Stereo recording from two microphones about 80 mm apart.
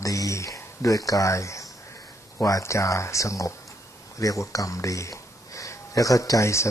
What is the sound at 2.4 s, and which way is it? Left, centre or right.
Speech, left.